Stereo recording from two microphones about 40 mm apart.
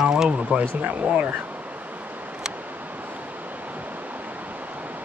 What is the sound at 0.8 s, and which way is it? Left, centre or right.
Speech, right.